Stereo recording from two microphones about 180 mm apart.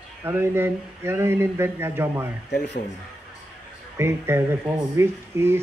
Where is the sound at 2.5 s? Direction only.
70° left (ahead or behind).